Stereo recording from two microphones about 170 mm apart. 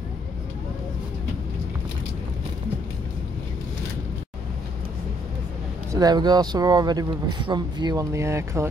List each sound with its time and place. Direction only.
5.9 s speech: 25° right (ahead or behind)